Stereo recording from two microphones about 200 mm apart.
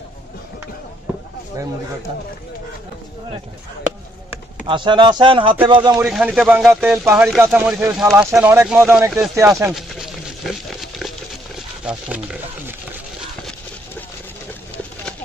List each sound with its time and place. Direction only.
4.6 s speech: 25° right (ahead or behind)
5.9 s speech: 5° right (ahead or behind)
9.7 s speech: centre (ahead or behind)
11.8 s speech: 5° right (ahead or behind)